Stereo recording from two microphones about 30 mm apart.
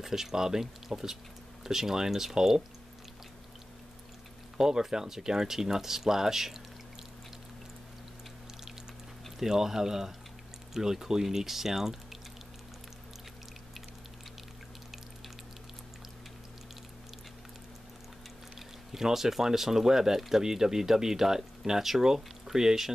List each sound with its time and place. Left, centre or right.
0.0 s speech: centre
4.6 s speech: right
9.4 s speech: centre
18.9 s speech: centre